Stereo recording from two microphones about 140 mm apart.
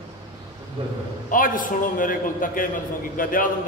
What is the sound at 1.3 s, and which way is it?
A man's voice, 75° left (ahead or behind).